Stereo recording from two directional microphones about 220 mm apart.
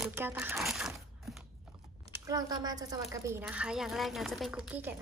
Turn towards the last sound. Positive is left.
turn(degrees=0)  # may be behind; listen again after turning